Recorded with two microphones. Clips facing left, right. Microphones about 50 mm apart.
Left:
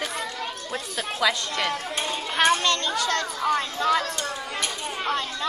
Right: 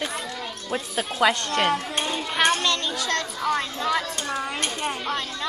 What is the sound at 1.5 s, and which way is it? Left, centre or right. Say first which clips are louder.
Speech: right 4 dB; right.